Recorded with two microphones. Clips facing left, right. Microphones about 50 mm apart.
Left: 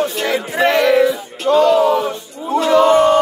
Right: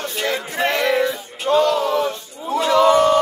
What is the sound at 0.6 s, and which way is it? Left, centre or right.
Music, left.